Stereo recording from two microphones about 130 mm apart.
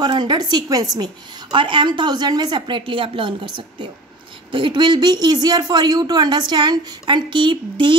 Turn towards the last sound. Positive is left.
turn(degrees=-40)  # may be behind; listen again after turning